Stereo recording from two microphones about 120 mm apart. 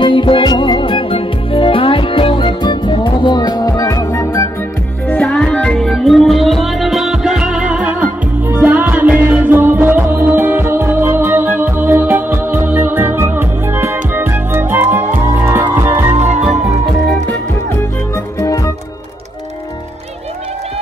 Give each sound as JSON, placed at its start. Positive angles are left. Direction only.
{"t": 0.0, "sound": "music", "side_deg": 45}
{"t": 5.0, "sound": "music", "side_deg": 10}
{"t": 16.2, "sound": "music", "side_deg": -75}
{"t": 18.1, "sound": "music", "side_deg": 25}